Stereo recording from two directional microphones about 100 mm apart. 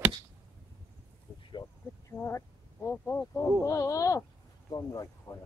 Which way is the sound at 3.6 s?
35° left (ahead or behind).